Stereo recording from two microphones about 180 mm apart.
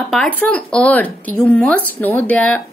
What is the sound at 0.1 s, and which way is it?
A woman's voice, 5° left (ahead or behind).